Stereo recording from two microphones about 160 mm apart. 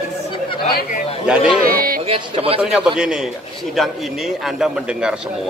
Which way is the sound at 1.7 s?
65° right (ahead or behind).